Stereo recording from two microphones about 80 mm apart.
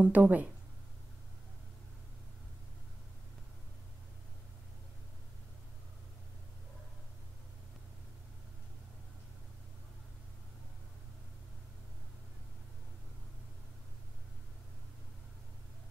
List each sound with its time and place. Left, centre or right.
0.0 s speech: right